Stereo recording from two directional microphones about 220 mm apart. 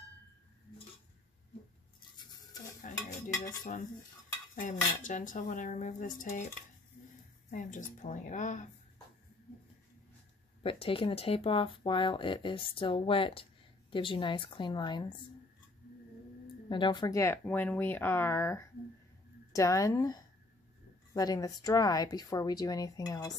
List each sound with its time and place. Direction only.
2.9 s speech: 35° left (ahead or behind)
4.6 s speech: 35° left (ahead or behind)
7.5 s speech: 35° left (ahead or behind)
10.6 s speech: 25° left (ahead or behind)
16.6 s speech: 20° left (ahead or behind)